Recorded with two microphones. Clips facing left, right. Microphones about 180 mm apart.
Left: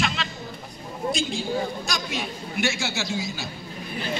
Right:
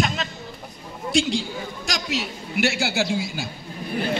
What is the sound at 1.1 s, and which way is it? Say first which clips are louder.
A man's voice: right 4 dB; 85° right.